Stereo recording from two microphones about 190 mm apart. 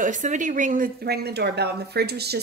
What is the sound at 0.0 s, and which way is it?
Speech, 40° right (ahead or behind).